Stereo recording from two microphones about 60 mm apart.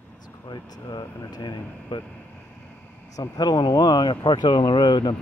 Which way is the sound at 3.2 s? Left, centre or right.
Left.